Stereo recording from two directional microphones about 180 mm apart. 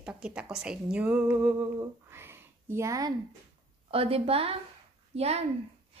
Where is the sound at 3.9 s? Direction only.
30° right (ahead or behind).